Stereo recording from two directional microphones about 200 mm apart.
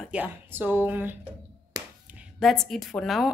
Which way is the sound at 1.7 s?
20° right (ahead or behind).